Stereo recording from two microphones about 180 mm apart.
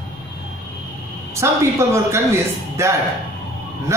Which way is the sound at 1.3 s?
15° right (ahead or behind).